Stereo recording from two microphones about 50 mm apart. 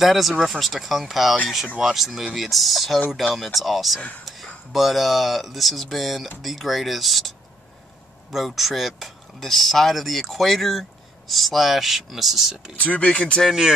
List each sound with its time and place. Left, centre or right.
0.0 s speech: centre
4.2 s a sound: centre
4.7 s speech: centre
8.5 s speech: centre
12.8 s speech: left
13.5 s speech: centre